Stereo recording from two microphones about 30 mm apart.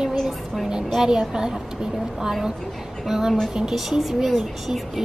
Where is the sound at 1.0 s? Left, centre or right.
Right.